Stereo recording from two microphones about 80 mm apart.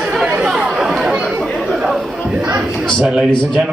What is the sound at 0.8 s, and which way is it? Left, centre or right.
Chatter, centre.